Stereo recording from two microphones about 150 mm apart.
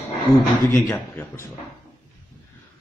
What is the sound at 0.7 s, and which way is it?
Speech, 15° left (ahead or behind).